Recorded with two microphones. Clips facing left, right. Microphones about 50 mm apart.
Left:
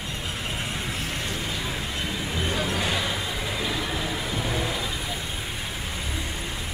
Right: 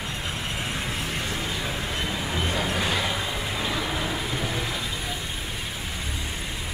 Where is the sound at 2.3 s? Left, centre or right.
Right.